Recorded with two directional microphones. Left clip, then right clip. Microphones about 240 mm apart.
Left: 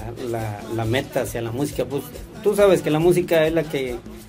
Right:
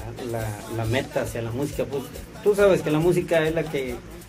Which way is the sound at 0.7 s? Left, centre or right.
Left.